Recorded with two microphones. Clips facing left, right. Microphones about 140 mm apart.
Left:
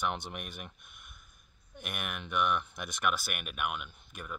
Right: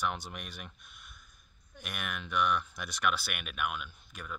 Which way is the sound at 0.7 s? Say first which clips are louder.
Right 1 dB; 55° left (ahead or behind).